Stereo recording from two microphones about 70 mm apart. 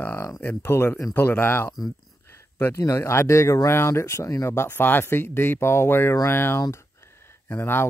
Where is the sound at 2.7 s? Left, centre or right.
Left.